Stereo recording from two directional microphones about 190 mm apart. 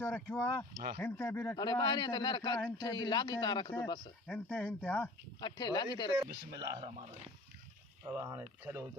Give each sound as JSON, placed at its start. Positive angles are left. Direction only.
{"t": 0.0, "sound": "speech", "side_deg": 10}
{"t": 1.6, "sound": "speech", "side_deg": 20}
{"t": 4.3, "sound": "speech", "side_deg": 5}
{"t": 5.4, "sound": "speech", "side_deg": 25}
{"t": 6.5, "sound": "speech", "side_deg": -20}
{"t": 8.1, "sound": "speech", "side_deg": -15}